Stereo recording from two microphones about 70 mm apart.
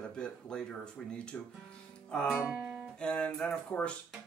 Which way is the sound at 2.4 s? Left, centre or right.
Centre.